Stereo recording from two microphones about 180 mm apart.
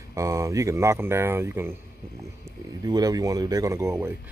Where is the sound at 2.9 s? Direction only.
20° right (ahead or behind).